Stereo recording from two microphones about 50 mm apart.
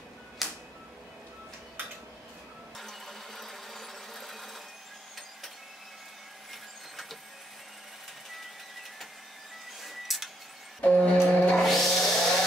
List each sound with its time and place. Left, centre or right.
0.4 s music: centre
2.8 s a sound: centre
6.5 s a sound: centre
9.8 s music: centre
10.8 s music: left
11.5 s music: centre